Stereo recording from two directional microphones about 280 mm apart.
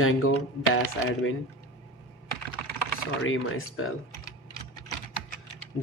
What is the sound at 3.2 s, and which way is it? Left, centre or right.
Speech, left.